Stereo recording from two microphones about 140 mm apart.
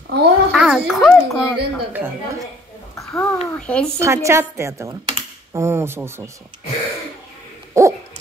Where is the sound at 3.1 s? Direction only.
10° left (ahead or behind).